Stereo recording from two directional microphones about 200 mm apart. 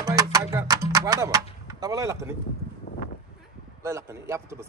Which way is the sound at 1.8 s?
15° right (ahead or behind).